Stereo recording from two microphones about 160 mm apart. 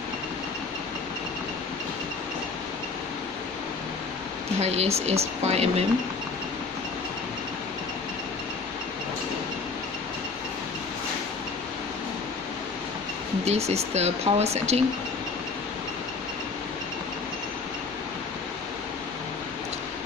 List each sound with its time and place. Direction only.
4.6 s speech: 40° right (ahead or behind)
13.5 s speech: 40° right (ahead or behind)